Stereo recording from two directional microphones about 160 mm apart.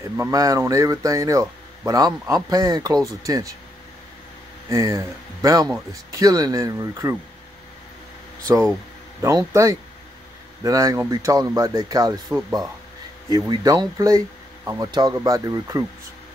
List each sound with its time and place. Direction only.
0.2 s speech: 20° right (ahead or behind)
4.6 s speech: 20° right (ahead or behind)
9.2 s speech: 20° right (ahead or behind)
13.3 s speech: 20° right (ahead or behind)